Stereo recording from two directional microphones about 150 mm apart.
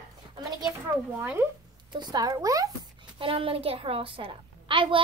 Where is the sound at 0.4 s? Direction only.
25° right (ahead or behind).